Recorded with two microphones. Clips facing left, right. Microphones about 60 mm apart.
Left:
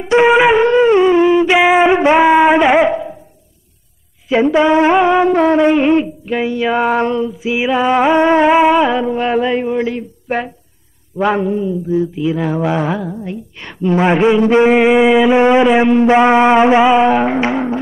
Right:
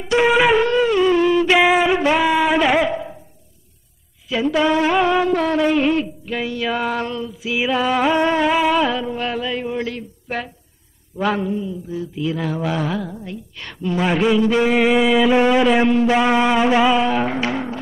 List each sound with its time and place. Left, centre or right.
0.0 s wind instrument: left
4.5 s mantra: left
9.7 s mantra: centre